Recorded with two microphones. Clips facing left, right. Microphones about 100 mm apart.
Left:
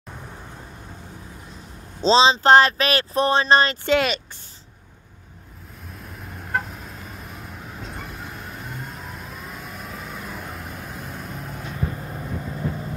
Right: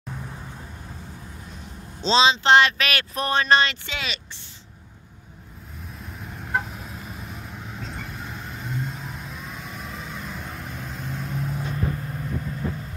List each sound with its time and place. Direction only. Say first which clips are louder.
2.0 s speech: left 3 dB; 35° left (ahead or behind)
6.4 s vehicle: even; centre (ahead or behind)
12.0 s vehicle: even; 20° left (ahead or behind)